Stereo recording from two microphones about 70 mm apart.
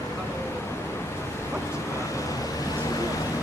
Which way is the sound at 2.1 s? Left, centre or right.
Left.